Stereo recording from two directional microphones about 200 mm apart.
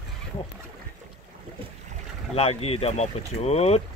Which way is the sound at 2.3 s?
30° left (ahead or behind).